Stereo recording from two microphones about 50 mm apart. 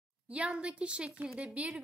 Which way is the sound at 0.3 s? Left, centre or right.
Right.